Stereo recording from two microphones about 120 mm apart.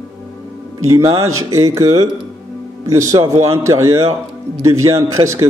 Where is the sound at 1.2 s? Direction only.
25° right (ahead or behind).